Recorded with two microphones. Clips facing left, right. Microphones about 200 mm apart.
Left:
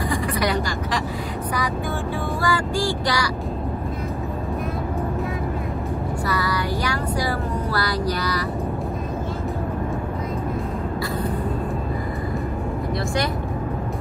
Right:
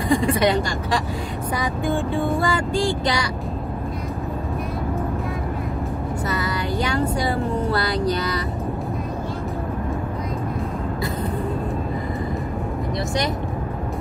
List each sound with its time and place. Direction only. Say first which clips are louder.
0.1 s speech: right 8 dB; 25° right (ahead or behind)
2.4 s a sound: right 1 dB; 20° right (ahead or behind)
6.2 s music: left 1 dB; 20° right (ahead or behind)